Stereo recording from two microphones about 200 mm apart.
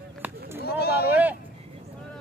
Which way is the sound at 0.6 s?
50° left (ahead or behind).